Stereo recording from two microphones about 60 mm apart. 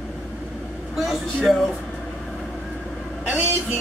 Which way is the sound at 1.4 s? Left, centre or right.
Centre.